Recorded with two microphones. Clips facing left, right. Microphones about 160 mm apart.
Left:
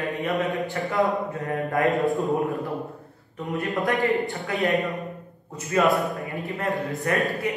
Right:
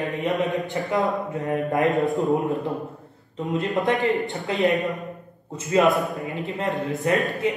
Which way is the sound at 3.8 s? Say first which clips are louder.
Left 2 dB; 20° right (ahead or behind).